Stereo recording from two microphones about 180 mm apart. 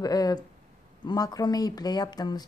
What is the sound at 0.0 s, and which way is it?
Speech, 20° left (ahead or behind).